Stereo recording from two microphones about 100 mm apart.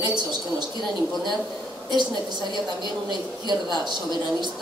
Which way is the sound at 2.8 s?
45° right (ahead or behind).